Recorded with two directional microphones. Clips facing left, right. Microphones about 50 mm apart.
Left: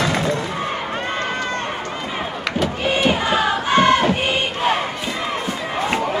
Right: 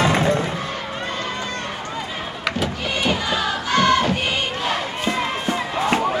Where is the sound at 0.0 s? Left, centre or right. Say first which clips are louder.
Right 2 dB; right.